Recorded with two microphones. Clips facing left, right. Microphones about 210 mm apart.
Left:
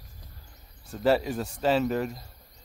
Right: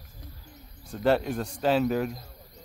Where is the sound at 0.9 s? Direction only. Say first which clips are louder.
Even; centre (ahead or behind).